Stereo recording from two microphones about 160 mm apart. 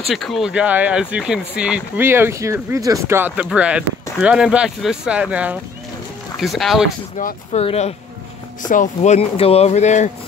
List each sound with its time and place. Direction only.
0.1 s speech: centre (ahead or behind)
7.2 s speech: 55° left (ahead or behind)
7.6 s speech: 40° left (ahead or behind)
8.6 s speech: 55° left (ahead or behind)